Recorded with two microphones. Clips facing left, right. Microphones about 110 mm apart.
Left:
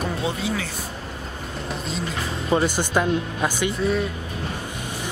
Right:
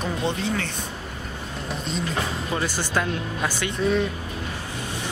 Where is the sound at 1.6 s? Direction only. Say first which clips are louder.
Right 1 dB; centre (ahead or behind).